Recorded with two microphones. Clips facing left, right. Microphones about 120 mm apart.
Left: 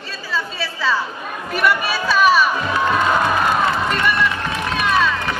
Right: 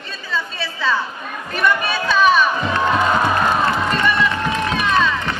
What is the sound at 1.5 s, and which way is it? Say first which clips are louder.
Speech: even; 5° left (ahead or behind).